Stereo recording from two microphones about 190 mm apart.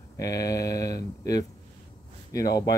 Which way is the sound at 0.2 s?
20° left (ahead or behind).